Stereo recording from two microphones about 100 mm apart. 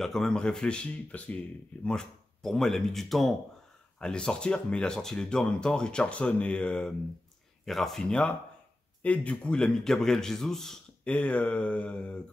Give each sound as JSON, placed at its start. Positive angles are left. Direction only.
{"t": 0.0, "sound": "a man's voice", "side_deg": 5}